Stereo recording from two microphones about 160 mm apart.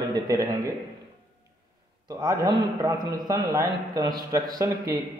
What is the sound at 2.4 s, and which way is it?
A man's voice, 25° right (ahead or behind).